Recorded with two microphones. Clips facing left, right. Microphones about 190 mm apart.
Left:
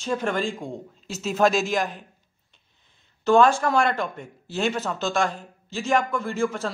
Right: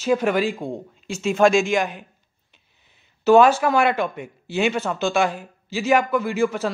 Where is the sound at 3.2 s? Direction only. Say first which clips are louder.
Right 4 dB; 5° right (ahead or behind).